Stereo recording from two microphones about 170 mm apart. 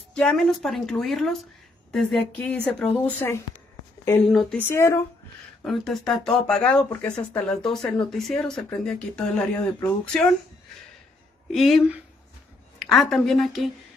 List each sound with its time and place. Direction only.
0.1 s speech: 5° left (ahead or behind)
4.6 s speech: 15° left (ahead or behind)
5.6 s speech: centre (ahead or behind)
11.5 s a woman's voice: centre (ahead or behind)